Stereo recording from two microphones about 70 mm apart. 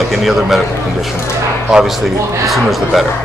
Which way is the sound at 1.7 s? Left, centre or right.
Centre.